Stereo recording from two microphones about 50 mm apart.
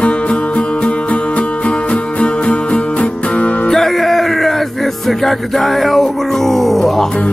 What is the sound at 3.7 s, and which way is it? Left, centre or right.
Music, centre.